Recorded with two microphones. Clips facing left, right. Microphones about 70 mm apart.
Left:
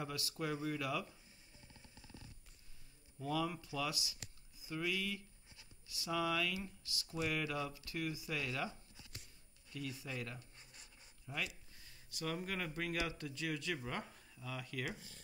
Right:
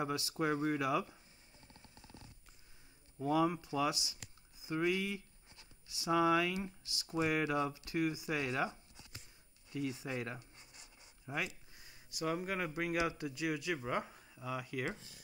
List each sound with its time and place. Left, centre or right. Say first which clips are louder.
0.0 s speech: right 6 dB; right
1.8 s a sound: right 1 dB; right
3.2 s speech: right 7 dB; right